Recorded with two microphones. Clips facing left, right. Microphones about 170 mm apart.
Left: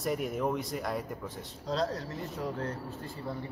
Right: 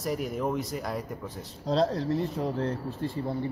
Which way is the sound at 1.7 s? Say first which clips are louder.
Right 7 dB; 30° right (ahead or behind).